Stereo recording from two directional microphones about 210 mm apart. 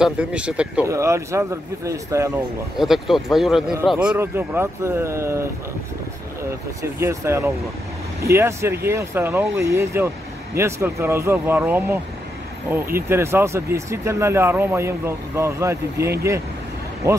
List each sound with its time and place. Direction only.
0.0 s speech: 5° right (ahead or behind)
2.8 s speech: centre (ahead or behind)
6.8 s speech: 15° right (ahead or behind)